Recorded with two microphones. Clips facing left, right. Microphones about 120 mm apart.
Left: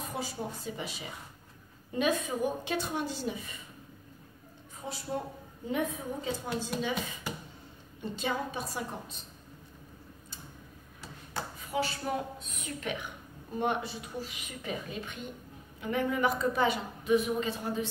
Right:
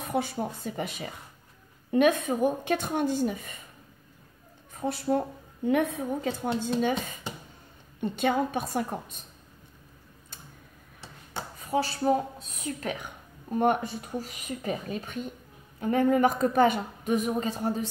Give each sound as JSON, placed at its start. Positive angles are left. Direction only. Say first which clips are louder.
{"t": 0.0, "sound": "a woman's voice", "louder": "right 7 dB", "side_deg": -60}
{"t": 4.7, "sound": "a woman's voice", "louder": "right 9 dB", "side_deg": -60}
{"t": 6.6, "sound": "a woman's voice", "louder": "right 6 dB", "side_deg": -55}
{"t": 11.6, "sound": "speech", "louder": "right 8 dB", "side_deg": -40}
{"t": 13.6, "sound": "a woman's voice", "louder": "right 6 dB", "side_deg": -45}